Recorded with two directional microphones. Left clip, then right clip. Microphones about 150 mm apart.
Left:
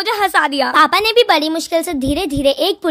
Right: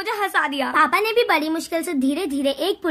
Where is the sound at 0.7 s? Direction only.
60° left (ahead or behind).